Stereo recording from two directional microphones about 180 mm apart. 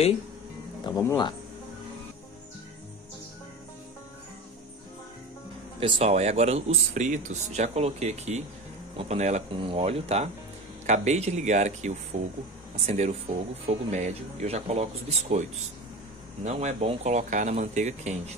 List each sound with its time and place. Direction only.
0.8 s speech: 20° left (ahead or behind)
5.8 s speech: 30° right (ahead or behind)
16.4 s speech: 35° right (ahead or behind)